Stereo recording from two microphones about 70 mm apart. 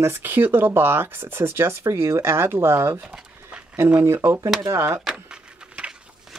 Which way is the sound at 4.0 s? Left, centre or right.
Right.